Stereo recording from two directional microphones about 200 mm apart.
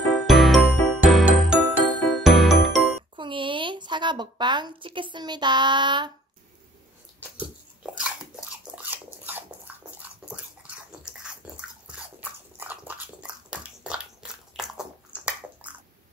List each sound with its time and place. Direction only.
0.1 s music: centre (ahead or behind)
3.2 s a woman's voice: 25° right (ahead or behind)
7.3 s biting: 5° right (ahead or behind)
10.9 s dog: 5° right (ahead or behind)